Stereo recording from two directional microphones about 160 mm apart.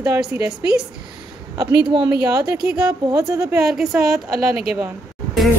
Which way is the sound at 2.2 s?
20° right (ahead or behind).